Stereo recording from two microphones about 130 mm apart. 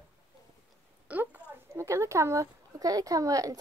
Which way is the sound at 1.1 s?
15° right (ahead or behind).